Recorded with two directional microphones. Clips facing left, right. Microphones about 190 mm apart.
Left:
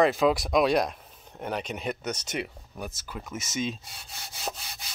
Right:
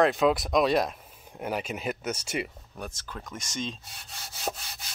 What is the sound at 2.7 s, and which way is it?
Speech, 5° left (ahead or behind).